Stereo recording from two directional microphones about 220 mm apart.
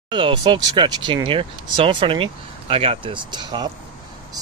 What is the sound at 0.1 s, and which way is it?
Speech, 20° right (ahead or behind).